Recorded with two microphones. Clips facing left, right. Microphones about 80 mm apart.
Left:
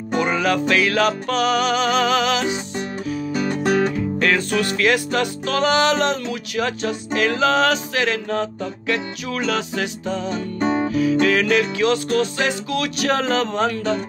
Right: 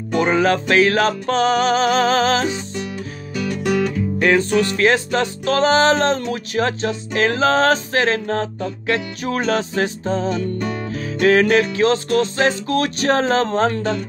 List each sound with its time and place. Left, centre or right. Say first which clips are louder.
0.2 s music: right 3 dB; right
3.3 s music: even; left
4.2 s music: right 5 dB; right
10.3 s music: left 2 dB; left
11.2 s music: right 4 dB; right